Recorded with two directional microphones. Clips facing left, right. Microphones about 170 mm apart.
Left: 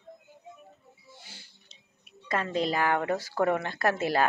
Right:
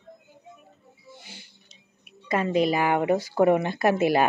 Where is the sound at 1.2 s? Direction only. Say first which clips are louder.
Right 5 dB; 15° right (ahead or behind).